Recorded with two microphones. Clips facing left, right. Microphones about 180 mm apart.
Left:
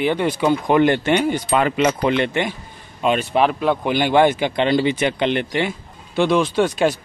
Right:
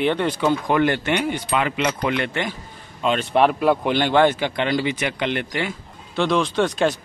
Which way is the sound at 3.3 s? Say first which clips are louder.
Right 1 dB; centre (ahead or behind).